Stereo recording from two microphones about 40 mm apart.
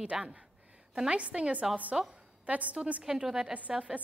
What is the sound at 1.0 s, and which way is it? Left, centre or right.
Speech, right.